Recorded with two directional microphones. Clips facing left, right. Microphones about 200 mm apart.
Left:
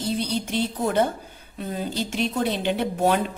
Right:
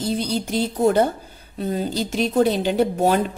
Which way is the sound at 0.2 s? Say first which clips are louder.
Right 3 dB; 40° right (ahead or behind).